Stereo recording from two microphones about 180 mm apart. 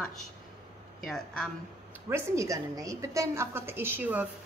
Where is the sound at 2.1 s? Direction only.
15° right (ahead or behind).